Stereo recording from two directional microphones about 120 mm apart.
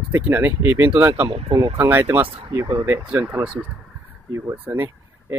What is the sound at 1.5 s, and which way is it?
Speech, 55° right (ahead or behind).